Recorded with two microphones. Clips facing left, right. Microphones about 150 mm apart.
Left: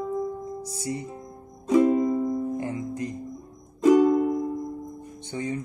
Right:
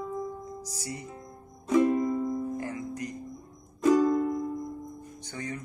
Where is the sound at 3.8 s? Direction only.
15° left (ahead or behind).